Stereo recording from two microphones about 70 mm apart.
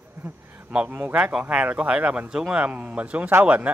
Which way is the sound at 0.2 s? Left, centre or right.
Right.